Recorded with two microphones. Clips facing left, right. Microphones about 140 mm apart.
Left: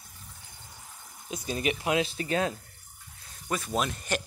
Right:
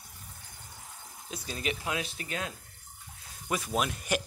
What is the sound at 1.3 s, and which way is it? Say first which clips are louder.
Speech: left 5 dB; 15° left (ahead or behind).